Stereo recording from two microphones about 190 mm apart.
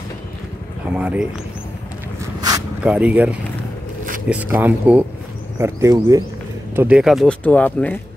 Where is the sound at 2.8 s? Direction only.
5° right (ahead or behind).